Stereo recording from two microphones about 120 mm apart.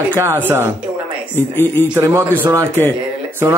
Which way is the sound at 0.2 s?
20° right (ahead or behind).